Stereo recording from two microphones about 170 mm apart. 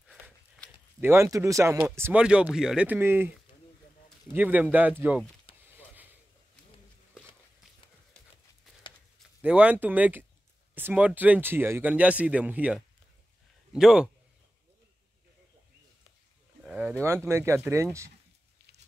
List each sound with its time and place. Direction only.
1.0 s speech: 15° right (ahead or behind)
4.3 s speech: 10° right (ahead or behind)
5.5 s a sound: 30° left (ahead or behind)
9.4 s a man's voice: 5° right (ahead or behind)
16.6 s a sound: 5° right (ahead or behind)
16.9 s speech: 15° right (ahead or behind)